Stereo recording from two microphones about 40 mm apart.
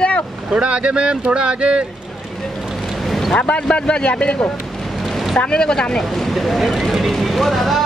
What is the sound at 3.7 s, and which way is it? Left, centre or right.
Speech, left.